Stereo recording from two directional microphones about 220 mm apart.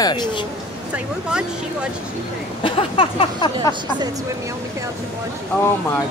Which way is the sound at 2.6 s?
25° left (ahead or behind).